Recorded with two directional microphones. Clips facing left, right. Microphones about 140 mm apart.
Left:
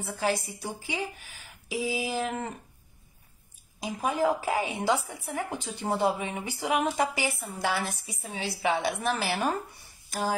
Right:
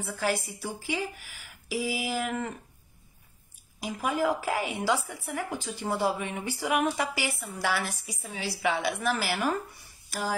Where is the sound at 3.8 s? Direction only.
20° left (ahead or behind).